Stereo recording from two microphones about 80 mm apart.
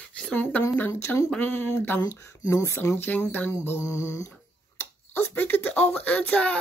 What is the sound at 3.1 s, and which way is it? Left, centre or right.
Speech, left.